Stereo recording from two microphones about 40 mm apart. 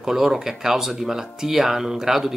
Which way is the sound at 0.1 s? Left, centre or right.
Centre.